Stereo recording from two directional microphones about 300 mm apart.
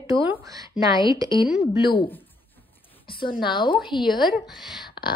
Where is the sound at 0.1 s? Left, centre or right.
Centre.